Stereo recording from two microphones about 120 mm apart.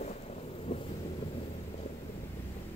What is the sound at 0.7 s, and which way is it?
Wind noise, 55° left (ahead or behind).